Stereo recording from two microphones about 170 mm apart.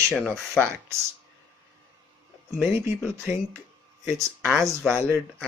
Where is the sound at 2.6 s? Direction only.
15° right (ahead or behind).